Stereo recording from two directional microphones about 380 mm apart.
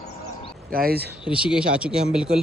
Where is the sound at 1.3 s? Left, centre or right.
Centre.